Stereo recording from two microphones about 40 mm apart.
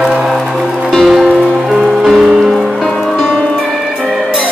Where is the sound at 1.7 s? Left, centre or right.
Centre.